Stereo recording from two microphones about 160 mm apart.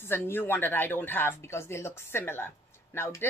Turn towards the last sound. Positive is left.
turn(degrees=15)  # may be behind; listen again after turning